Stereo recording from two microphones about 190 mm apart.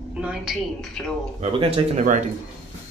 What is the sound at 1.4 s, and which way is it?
Speech, 35° right (ahead or behind).